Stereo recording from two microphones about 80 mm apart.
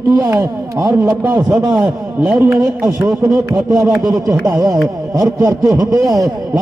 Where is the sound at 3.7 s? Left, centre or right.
Right.